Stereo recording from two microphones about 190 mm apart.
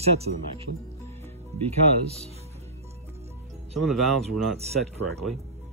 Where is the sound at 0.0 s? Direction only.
35° right (ahead or behind).